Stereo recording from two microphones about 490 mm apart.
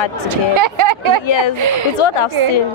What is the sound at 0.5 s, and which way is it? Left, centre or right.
Speech, right.